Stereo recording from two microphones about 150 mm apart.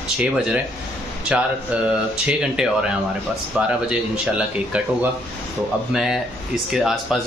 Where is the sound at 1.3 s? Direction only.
5° right (ahead or behind).